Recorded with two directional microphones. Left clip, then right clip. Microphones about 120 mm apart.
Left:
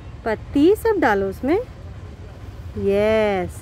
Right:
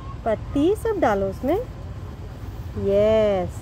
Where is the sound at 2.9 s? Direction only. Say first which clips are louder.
Even; 90° left.